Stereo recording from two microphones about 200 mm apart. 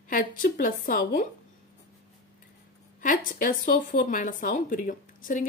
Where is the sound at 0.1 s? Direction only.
45° left (ahead or behind).